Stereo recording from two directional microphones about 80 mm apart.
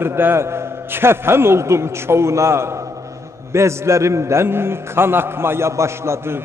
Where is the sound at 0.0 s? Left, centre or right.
Right.